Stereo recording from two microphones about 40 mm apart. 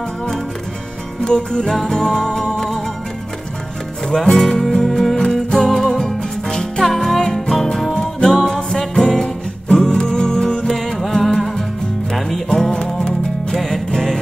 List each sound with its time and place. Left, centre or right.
1.2 s music: centre
4.1 s music: centre
10.7 s music: centre